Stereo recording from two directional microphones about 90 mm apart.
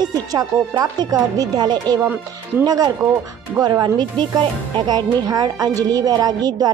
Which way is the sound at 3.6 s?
50° right (ahead or behind).